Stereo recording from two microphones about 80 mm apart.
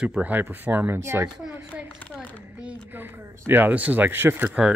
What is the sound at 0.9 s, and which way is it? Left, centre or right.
Speech, right.